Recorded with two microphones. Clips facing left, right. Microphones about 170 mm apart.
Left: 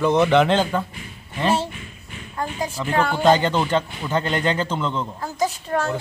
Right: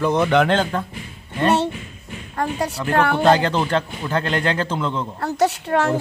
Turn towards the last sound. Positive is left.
turn(degrees=-70)  # may be behind; listen again after turning